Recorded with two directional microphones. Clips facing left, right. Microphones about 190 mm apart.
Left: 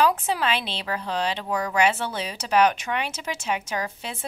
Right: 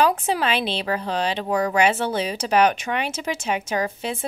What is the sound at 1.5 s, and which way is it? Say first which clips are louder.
Speech: right 5 dB; 30° right (ahead or behind).